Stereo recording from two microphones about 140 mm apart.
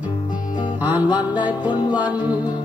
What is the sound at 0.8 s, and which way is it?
Music, 10° right (ahead or behind).